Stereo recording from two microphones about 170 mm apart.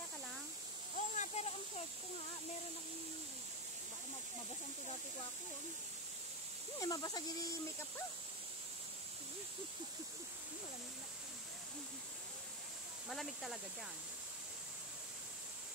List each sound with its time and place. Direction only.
0.9 s a sound: 45° left (ahead or behind)
6.8 s speech: 20° left (ahead or behind)
13.1 s speech: centre (ahead or behind)